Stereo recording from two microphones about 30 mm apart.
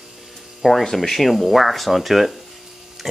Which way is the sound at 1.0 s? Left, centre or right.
Centre.